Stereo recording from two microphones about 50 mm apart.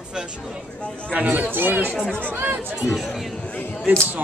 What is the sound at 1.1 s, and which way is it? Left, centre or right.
Speech, right.